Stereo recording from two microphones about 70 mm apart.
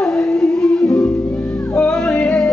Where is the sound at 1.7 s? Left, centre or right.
Centre.